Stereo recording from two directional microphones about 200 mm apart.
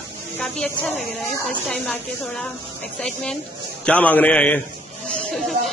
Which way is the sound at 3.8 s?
5° left (ahead or behind).